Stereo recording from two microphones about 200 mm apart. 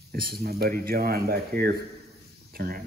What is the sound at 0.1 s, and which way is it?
Speech, 50° right (ahead or behind).